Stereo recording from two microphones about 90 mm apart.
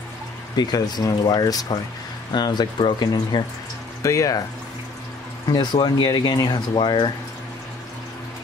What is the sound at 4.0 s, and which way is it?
Speech, 35° left (ahead or behind).